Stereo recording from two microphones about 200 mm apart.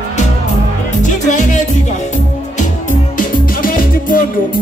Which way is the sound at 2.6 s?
40° left (ahead or behind).